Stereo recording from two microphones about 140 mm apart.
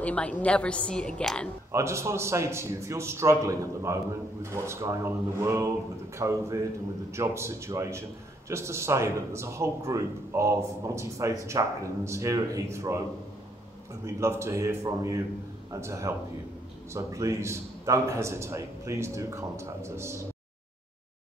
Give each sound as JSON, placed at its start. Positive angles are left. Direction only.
{"t": 0.0, "sound": "a woman's voice", "side_deg": 10}
{"t": 1.7, "sound": "a man's voice", "side_deg": -20}
{"t": 14.0, "sound": "a man's voice", "side_deg": -20}